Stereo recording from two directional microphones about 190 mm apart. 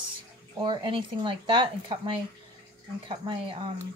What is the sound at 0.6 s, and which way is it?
Speech, 25° right (ahead or behind).